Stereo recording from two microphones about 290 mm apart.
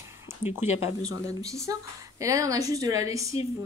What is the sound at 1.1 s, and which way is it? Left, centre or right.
Speech, centre.